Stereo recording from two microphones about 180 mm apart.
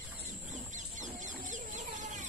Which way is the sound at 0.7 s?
45° right (ahead or behind).